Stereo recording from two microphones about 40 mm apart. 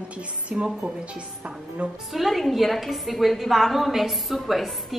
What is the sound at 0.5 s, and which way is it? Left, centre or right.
Speech, right.